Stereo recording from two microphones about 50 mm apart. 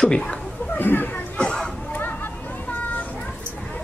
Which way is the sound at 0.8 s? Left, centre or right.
Left.